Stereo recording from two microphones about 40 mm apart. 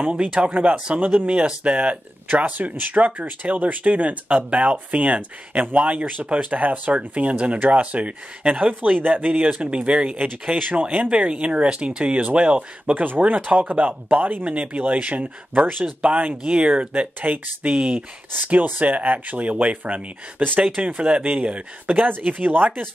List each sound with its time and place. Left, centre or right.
0.1 s speech: right
12.9 s speech: right
14.5 s speech: right
21.0 s speech: right
21.9 s speech: right